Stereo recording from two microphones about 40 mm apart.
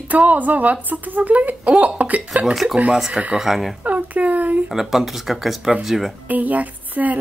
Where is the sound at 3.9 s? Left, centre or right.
Right.